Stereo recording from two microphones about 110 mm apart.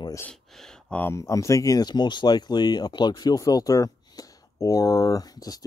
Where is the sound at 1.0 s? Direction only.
25° left (ahead or behind).